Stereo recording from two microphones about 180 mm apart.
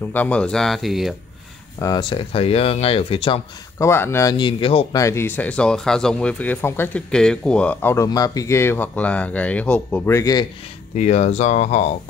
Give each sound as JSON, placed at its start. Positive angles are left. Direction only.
{"t": 0.1, "sound": "speech", "side_deg": 10}
{"t": 1.8, "sound": "speech", "side_deg": 20}
{"t": 3.7, "sound": "speech", "side_deg": 15}
{"t": 5.0, "sound": "speech", "side_deg": 15}
{"t": 11.0, "sound": "speech", "side_deg": 40}